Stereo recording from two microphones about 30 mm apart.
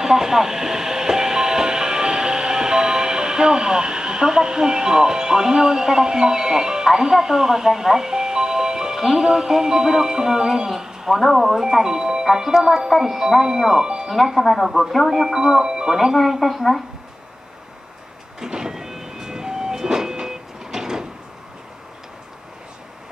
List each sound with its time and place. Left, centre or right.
0.0 s speech: centre
11.1 s speech: centre
11.8 s speech: centre
14.1 s speech: centre
15.3 s speech: centre
16.2 s speech: centre
18.4 s train: centre